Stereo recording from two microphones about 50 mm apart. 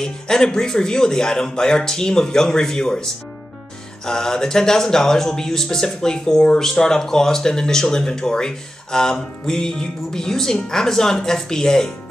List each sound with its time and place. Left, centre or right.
0.0 s speech: centre